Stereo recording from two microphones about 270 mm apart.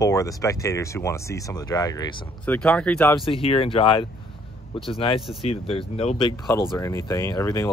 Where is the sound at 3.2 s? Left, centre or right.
Left.